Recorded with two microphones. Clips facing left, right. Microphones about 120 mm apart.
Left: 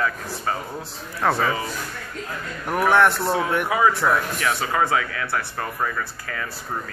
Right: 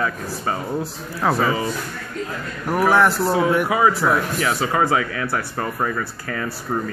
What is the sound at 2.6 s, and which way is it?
Speech, 5° right (ahead or behind).